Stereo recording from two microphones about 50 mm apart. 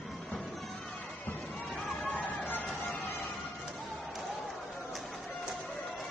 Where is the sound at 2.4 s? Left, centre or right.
Left.